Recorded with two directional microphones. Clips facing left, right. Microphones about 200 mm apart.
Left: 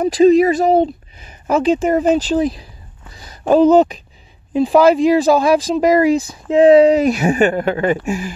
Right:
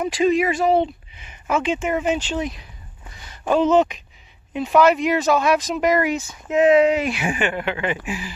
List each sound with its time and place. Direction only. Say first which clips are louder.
0.0 s speech: left 8 dB; 35° left (ahead or behind)